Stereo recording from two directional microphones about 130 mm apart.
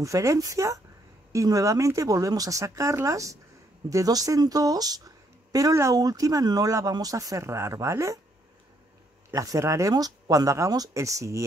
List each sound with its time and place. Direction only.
0.0 s speech: 25° right (ahead or behind)
9.3 s speech: 25° right (ahead or behind)